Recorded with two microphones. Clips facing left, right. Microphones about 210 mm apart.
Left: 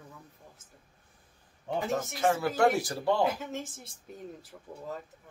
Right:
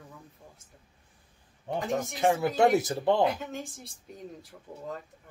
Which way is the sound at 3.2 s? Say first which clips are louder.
Right 2 dB; 5° left (ahead or behind).